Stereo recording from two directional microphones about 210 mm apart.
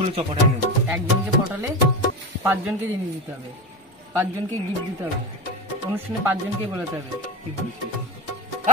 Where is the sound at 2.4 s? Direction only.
10° right (ahead or behind).